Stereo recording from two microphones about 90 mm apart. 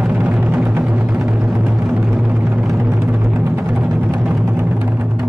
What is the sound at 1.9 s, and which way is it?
Vehicle, 15° right (ahead or behind).